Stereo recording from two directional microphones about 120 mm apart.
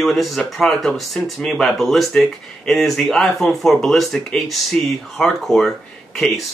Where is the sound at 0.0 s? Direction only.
Centre (ahead or behind).